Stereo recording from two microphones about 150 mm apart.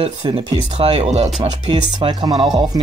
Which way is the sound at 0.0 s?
35° right (ahead or behind).